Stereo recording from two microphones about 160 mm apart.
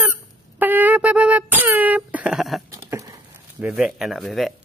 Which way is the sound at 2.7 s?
20° right (ahead or behind).